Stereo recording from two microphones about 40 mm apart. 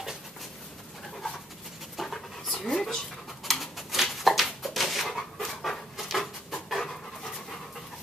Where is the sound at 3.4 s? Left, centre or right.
Centre.